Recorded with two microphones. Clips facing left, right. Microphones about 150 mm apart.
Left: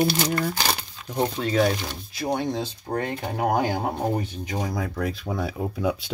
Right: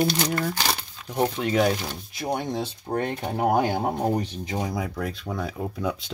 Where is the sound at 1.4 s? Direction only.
15° right (ahead or behind).